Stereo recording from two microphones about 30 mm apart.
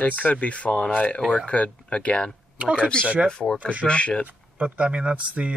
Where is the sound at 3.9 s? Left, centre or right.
Left.